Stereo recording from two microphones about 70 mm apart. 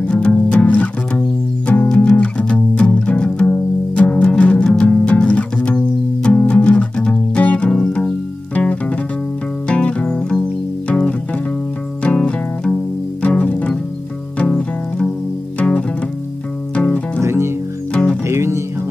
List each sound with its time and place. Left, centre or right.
0.0 s music: centre
16.7 s music: centre
17.2 s music: right